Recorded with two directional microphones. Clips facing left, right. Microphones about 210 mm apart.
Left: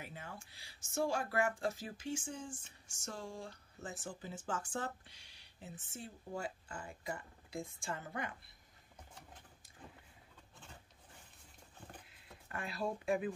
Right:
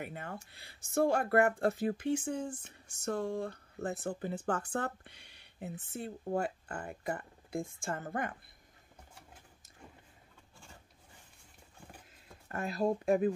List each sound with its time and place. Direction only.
0.0 s speech: 60° right (ahead or behind)
12.4 s speech: 45° right (ahead or behind)